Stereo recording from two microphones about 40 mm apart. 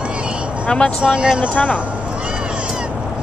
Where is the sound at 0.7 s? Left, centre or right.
Left.